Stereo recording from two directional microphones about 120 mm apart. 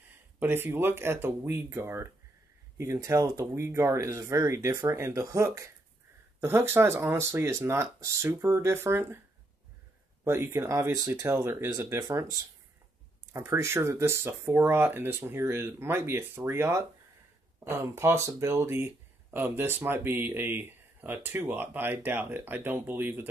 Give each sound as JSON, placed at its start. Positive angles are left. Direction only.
{"t": 0.4, "sound": "speech", "side_deg": -20}
{"t": 10.2, "sound": "speech", "side_deg": -20}